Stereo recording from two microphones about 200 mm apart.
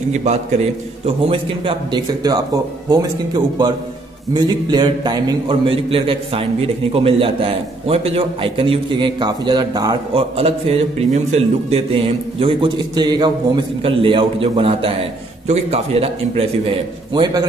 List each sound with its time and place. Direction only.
0.1 s a man's voice: 35° right (ahead or behind)